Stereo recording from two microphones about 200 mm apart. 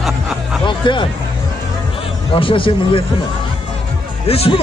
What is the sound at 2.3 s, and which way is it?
Speech, 25° left (ahead or behind).